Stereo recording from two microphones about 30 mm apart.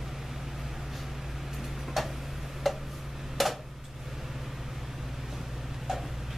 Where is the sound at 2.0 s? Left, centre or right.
Centre.